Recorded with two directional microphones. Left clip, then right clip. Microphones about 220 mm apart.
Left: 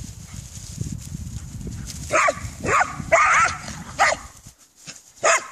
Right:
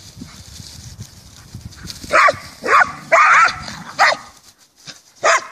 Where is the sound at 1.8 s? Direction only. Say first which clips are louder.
Right 7 dB; centre (ahead or behind).